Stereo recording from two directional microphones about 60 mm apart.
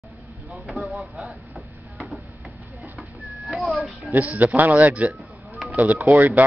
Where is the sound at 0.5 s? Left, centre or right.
Centre.